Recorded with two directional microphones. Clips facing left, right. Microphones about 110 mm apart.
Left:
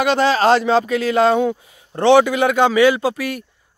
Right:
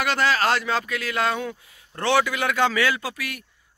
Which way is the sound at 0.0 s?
25° left (ahead or behind).